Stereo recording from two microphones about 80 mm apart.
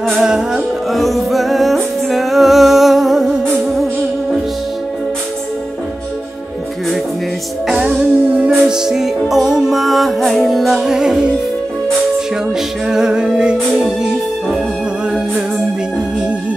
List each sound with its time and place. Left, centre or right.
0.2 s music: centre
7.6 s music: centre
12.8 s music: centre